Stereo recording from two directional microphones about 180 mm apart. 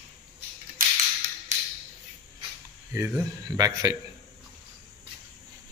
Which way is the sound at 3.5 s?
20° right (ahead or behind).